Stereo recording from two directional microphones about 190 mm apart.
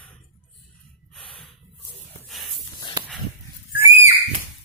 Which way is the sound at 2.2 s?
Centre (ahead or behind).